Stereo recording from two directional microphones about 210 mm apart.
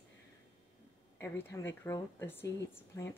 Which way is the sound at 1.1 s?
10° left (ahead or behind).